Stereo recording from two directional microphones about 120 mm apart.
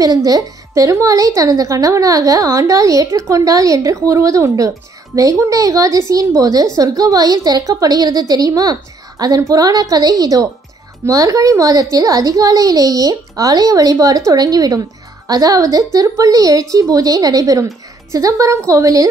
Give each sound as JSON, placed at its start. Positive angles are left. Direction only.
{"t": 0.0, "sound": "a woman's voice", "side_deg": -30}